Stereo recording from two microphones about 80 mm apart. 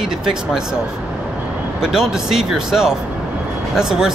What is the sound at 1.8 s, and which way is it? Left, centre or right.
Speech, centre.